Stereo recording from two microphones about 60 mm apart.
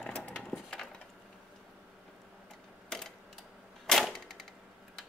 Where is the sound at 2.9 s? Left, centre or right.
Centre.